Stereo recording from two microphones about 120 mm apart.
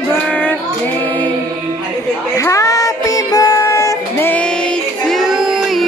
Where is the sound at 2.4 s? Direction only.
25° left (ahead or behind).